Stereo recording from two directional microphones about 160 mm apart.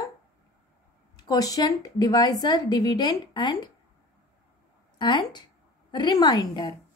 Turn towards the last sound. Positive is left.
turn(degrees=25)  # may be behind; listen again after turning